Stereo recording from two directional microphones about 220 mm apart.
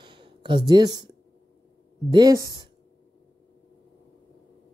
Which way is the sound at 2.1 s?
15° right (ahead or behind).